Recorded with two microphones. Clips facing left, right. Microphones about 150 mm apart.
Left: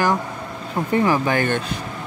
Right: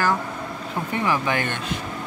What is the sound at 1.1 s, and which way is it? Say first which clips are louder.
Speech: left 4 dB; 40° left (ahead or behind).